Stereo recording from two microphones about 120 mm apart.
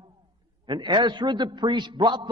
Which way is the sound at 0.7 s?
40° right (ahead or behind).